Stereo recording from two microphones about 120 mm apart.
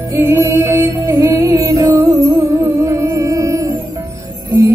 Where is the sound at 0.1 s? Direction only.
20° right (ahead or behind).